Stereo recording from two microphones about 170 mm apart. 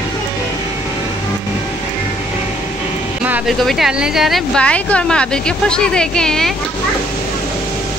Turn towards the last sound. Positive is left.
turn(degrees=5)  # may be behind; listen again after turning